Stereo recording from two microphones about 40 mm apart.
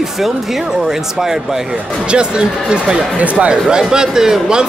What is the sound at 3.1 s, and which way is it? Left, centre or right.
Speech, right.